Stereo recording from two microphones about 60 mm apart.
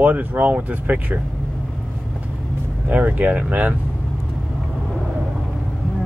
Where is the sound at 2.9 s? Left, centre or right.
Right.